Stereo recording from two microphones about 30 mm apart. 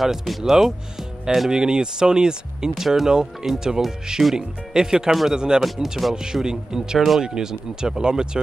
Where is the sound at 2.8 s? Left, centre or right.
Centre.